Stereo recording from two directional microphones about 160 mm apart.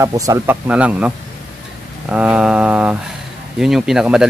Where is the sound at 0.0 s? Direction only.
20° right (ahead or behind).